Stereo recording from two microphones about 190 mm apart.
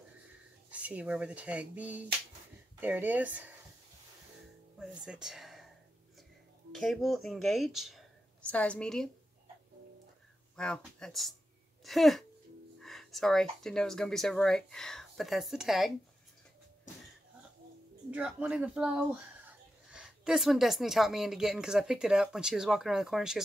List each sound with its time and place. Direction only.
0.7 s speech: 5° right (ahead or behind)
4.7 s speech: 5° right (ahead or behind)
6.7 s speech: centre (ahead or behind)
10.5 s speech: 5° left (ahead or behind)
18.1 s speech: 5° right (ahead or behind)